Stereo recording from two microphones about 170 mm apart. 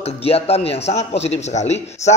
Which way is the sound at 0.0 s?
35° left (ahead or behind).